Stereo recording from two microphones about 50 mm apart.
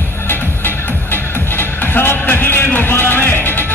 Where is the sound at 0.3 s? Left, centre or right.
Left.